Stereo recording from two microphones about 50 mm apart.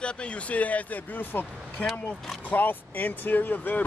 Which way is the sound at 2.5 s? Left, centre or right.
Left.